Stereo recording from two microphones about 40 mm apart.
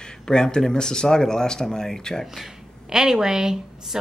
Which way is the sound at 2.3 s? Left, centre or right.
Centre.